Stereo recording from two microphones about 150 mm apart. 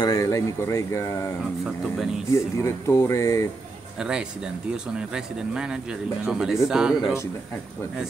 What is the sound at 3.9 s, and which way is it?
A man's voice, 5° right (ahead or behind).